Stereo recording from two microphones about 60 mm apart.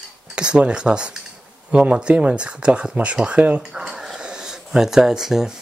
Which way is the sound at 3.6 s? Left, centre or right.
Centre.